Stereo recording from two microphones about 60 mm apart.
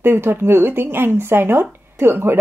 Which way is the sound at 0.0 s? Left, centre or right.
Right.